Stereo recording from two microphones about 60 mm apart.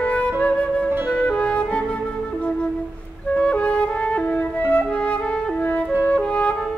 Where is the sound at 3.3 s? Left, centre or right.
Left.